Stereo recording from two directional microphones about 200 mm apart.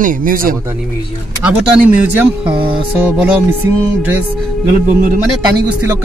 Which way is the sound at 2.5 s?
25° right (ahead or behind).